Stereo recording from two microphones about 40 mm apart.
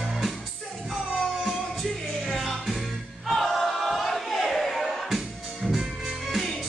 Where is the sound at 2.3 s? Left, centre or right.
Centre.